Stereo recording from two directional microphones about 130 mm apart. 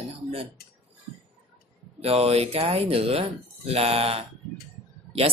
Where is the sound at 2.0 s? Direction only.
50° right (ahead or behind).